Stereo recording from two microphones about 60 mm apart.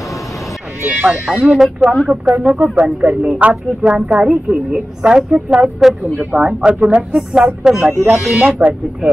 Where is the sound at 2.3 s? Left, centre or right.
Right; by 6.2 s centre.